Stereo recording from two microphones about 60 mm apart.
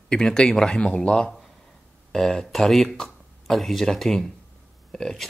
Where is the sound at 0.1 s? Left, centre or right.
Centre.